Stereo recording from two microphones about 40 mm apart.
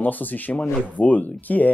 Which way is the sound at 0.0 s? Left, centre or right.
Left.